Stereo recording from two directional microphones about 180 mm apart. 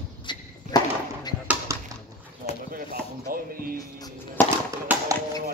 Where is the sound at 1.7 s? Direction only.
15° right (ahead or behind).